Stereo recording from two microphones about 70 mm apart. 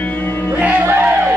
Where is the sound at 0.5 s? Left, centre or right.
Right.